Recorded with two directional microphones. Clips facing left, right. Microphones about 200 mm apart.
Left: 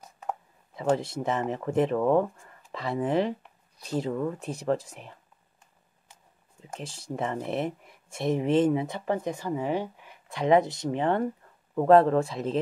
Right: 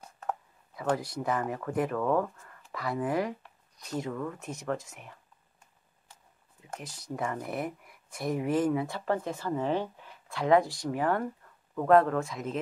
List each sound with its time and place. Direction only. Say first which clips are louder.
0.0 s a sound: left 1 dB; 10° left (ahead or behind)
0.9 s speech: left 3 dB; 25° left (ahead or behind)
6.7 s speech: left 3 dB; 30° left (ahead or behind)